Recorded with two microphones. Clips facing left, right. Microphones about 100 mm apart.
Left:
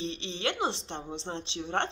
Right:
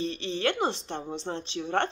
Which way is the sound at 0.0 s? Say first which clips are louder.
Right 4 dB; 25° left (ahead or behind).